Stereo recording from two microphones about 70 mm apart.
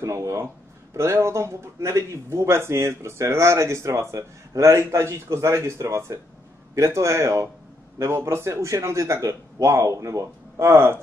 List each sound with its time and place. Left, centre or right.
0.0 s speech: right